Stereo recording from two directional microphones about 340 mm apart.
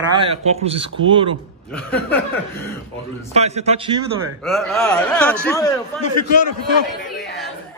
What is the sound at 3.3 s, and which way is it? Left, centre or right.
Speech, centre.